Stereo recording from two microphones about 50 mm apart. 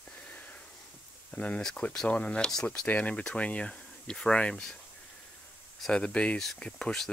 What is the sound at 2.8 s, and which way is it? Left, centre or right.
Speech, left.